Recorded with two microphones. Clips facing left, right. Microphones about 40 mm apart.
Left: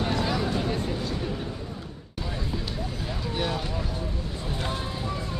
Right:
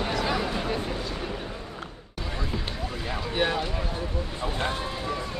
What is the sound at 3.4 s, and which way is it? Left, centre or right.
Speech, right.